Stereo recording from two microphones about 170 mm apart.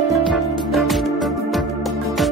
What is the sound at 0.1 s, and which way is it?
Music, centre (ahead or behind).